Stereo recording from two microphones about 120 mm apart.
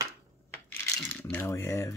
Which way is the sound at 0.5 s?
15° left (ahead or behind).